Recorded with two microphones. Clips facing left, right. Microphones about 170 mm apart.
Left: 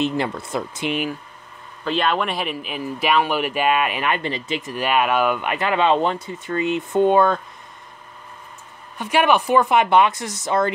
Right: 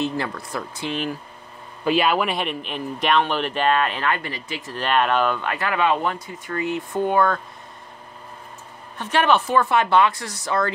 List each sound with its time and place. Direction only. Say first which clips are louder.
0.0 s speech: left 3 dB; 20° left (ahead or behind)
1.9 s speech: right 2 dB; 5° right (ahead or behind); by 7.3 s 20° left (ahead or behind)
8.9 s speech: left 2 dB; 10° left (ahead or behind)